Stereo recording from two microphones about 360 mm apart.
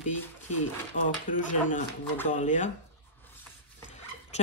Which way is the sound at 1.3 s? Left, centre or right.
Left.